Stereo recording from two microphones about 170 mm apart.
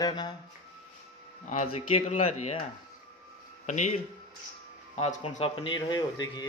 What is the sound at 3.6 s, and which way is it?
Speech, 45° left (ahead or behind).